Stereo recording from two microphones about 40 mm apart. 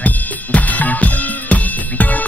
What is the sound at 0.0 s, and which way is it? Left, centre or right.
Music, left.